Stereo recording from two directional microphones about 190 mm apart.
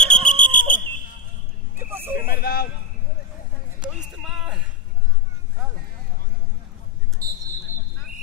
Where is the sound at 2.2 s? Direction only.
55° left (ahead or behind).